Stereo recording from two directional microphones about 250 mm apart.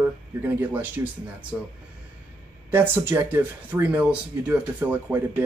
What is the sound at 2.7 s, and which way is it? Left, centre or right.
Speech, centre.